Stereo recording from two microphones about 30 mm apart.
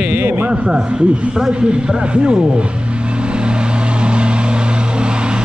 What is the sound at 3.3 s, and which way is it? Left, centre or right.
Vehicle, right.